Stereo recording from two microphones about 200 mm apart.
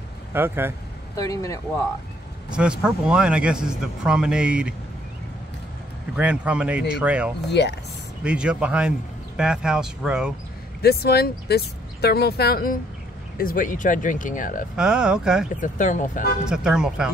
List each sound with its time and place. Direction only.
0.3 s a man's voice: 10° right (ahead or behind)
1.1 s speech: 15° left (ahead or behind)
2.5 s speech: 5° right (ahead or behind)
6.1 s a man's voice: 5° right (ahead or behind)
7.6 s speech: 55° left (ahead or behind)
8.2 s speech: 5° right (ahead or behind)
10.8 s speech: 50° left (ahead or behind)
14.8 s speech: 5° right (ahead or behind)
15.6 s speech: 40° left (ahead or behind)
16.4 s speech: 5° right (ahead or behind)